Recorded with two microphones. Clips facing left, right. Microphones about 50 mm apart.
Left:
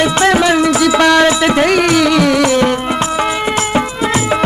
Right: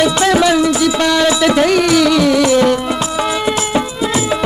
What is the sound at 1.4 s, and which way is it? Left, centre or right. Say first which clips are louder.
Music: even; left.